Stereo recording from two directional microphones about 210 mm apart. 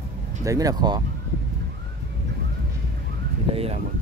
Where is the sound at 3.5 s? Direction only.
30° right (ahead or behind).